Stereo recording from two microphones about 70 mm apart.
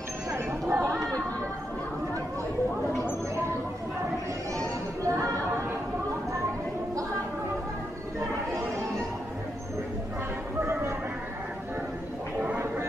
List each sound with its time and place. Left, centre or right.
0.3 s chatter: right
5.0 s chatter: right
10.6 s music: right